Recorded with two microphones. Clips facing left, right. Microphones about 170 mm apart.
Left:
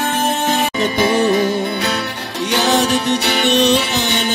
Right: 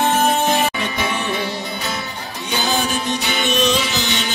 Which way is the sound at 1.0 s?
35° left (ahead or behind).